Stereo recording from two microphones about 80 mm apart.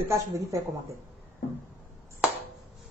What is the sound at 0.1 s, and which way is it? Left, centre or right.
Speech, right.